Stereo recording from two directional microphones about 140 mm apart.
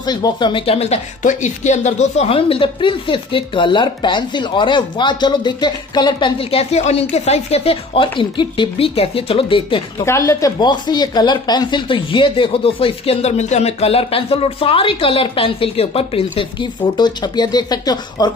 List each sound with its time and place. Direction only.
0.0 s speech: 30° left (ahead or behind)
10.0 s speech: 20° left (ahead or behind)